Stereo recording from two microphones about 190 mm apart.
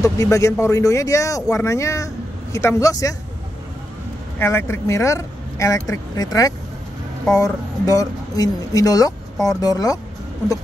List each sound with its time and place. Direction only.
0.0 s speech: 15° left (ahead or behind)
4.4 s speech: 15° left (ahead or behind)